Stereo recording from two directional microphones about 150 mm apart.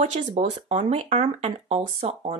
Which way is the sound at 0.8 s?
50° right (ahead or behind).